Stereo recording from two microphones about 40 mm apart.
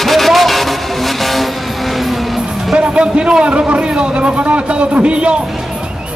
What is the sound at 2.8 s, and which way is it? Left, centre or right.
A man's voice, right.